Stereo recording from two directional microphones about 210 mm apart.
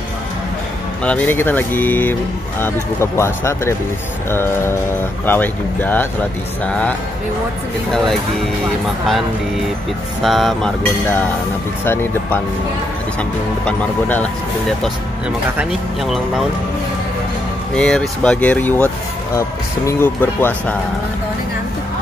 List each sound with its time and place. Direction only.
1.0 s speech: 10° left (ahead or behind)
10.2 s speech: centre (ahead or behind)
13.7 s speech: 10° left (ahead or behind)
17.7 s speech: 5° left (ahead or behind)
19.9 s speech: 10° left (ahead or behind)